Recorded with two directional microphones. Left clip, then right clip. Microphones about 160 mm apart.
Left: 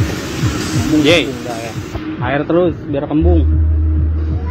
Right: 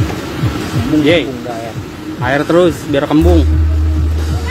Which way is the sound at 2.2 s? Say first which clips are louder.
Right 4 dB; 40° right (ahead or behind).